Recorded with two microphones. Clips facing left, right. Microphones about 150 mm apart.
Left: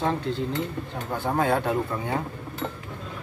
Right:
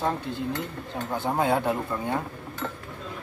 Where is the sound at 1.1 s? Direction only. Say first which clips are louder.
Left 1 dB; 10° right (ahead or behind).